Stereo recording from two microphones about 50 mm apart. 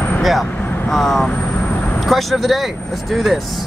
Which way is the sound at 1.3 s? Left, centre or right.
Left.